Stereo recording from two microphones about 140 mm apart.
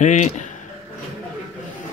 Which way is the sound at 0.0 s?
60° left (ahead or behind).